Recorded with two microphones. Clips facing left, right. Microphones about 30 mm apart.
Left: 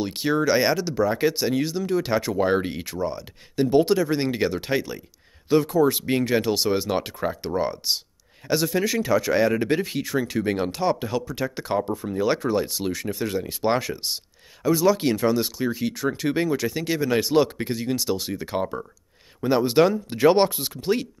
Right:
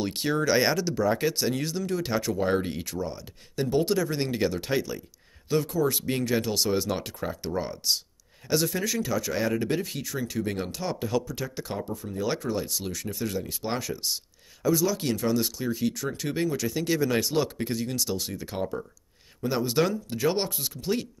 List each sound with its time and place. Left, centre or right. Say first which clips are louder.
0.0 s speech: left 4 dB; centre; by 21.1 s left